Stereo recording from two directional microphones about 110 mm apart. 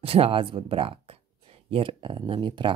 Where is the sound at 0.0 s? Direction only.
60° right (ahead or behind).